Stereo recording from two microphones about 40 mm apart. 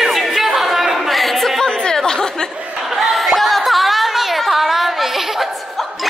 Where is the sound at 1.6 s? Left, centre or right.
Centre.